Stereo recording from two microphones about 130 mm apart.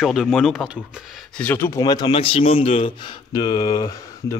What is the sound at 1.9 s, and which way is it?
Speech, 30° left (ahead or behind).